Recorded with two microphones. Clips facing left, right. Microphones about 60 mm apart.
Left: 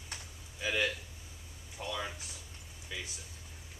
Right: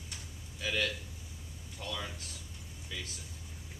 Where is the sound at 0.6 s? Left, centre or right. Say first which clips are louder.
Left 1 dB; centre.